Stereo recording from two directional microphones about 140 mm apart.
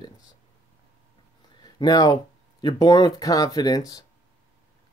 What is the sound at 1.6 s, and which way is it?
Speech, 30° left (ahead or behind).